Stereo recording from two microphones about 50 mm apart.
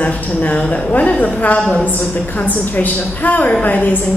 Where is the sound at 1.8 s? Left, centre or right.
Left.